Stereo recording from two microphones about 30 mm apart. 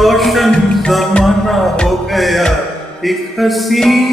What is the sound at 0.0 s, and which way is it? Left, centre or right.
Music, centre.